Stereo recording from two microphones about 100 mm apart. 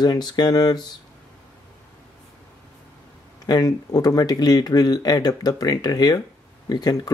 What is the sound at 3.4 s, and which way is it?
Speech, 40° left (ahead or behind).